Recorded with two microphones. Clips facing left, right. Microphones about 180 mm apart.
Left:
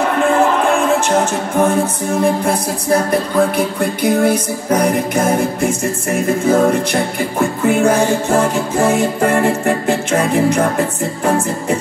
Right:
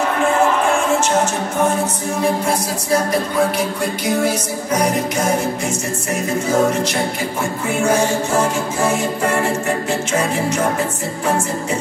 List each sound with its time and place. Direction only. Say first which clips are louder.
3.1 s music: left 3 dB; 55° left (ahead or behind)